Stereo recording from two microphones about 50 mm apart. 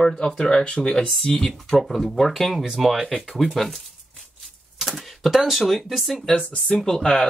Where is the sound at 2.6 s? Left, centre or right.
Centre.